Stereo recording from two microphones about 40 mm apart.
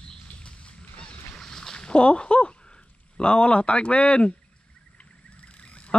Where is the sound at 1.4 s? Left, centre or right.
Centre.